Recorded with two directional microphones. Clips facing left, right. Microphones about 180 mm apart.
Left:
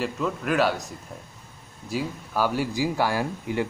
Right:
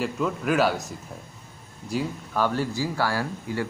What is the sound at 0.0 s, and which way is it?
A man's voice, centre (ahead or behind).